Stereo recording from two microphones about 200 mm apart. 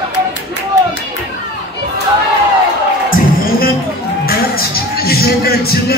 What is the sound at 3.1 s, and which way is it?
Music, 45° left (ahead or behind).